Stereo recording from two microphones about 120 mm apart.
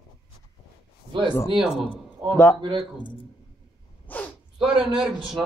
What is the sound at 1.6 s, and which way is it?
Speech, 5° right (ahead or behind).